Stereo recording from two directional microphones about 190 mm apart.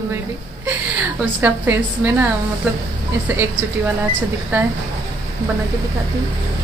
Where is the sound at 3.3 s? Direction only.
15° right (ahead or behind).